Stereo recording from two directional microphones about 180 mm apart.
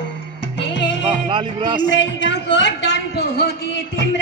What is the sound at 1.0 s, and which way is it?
Music, 30° right (ahead or behind).